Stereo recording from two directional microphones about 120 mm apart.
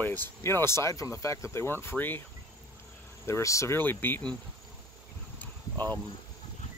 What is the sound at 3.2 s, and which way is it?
Speech, 25° left (ahead or behind).